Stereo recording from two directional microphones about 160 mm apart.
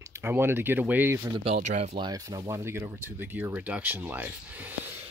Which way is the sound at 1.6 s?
45° right (ahead or behind).